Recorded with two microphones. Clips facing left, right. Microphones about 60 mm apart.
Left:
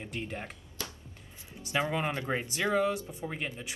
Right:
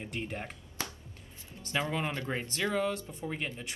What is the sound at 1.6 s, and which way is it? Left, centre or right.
Speech, centre.